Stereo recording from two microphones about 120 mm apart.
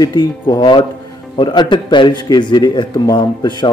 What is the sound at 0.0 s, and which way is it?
Speech, 35° left (ahead or behind).